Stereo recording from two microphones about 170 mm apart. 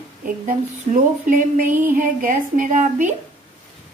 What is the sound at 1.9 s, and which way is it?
A woman's voice, 55° right (ahead or behind).